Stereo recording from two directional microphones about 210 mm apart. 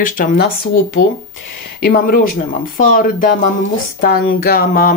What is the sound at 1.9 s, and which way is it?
Speech, 40° left (ahead or behind).